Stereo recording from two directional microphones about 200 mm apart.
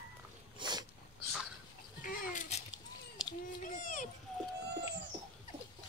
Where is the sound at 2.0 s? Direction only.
45° left (ahead or behind).